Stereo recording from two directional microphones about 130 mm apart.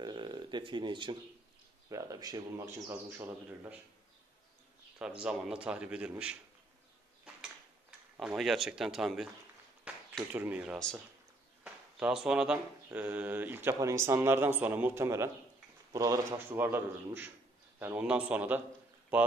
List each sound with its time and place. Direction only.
0.0 s a sound: 35° right (ahead or behind)
1.9 s a man's voice: 25° right (ahead or behind)
2.5 s a man's voice: 20° right (ahead or behind)
5.2 s a man's voice: 5° right (ahead or behind)
8.2 s speech: 5° right (ahead or behind)
9.9 s a sound: 10° right (ahead or behind)
10.3 s a man's voice: 10° right (ahead or behind)